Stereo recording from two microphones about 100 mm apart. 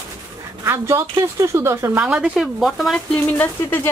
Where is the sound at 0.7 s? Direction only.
25° right (ahead or behind).